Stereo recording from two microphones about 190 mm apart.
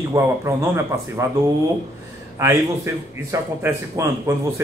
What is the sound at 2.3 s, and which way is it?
Speech, 15° right (ahead or behind).